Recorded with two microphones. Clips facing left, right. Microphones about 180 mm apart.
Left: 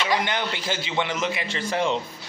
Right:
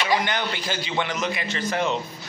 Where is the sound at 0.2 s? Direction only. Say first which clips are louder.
Even; 25° left (ahead or behind).